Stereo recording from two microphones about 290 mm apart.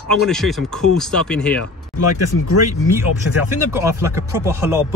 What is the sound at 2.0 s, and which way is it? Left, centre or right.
Speech, left.